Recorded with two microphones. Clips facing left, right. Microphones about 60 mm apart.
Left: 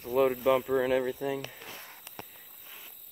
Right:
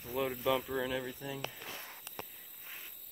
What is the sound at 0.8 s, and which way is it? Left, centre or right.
Speech, left.